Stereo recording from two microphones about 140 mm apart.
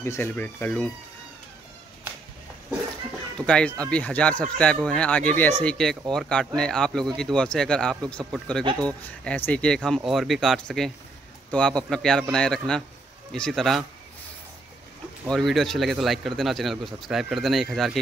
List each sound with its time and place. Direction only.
0.0 s speech: 15° left (ahead or behind)
3.4 s speech: 10° left (ahead or behind)
15.2 s speech: centre (ahead or behind)